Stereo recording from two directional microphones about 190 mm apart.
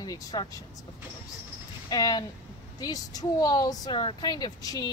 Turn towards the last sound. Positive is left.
turn(degrees=20)  # may be behind; listen again after turning